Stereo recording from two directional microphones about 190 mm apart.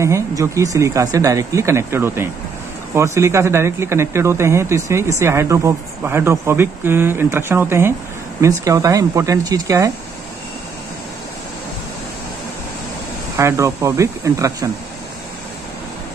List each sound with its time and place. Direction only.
0.0 s speech: 15° right (ahead or behind)
13.4 s speech: 15° right (ahead or behind)